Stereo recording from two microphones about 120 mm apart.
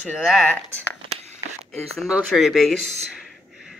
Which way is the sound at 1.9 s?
Centre (ahead or behind).